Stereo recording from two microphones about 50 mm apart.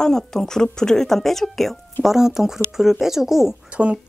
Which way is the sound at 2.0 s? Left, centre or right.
Centre.